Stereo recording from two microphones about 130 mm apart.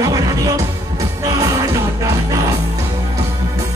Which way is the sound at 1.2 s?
25° right (ahead or behind).